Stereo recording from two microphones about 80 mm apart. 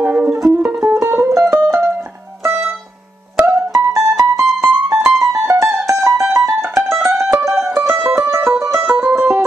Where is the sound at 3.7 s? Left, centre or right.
Right.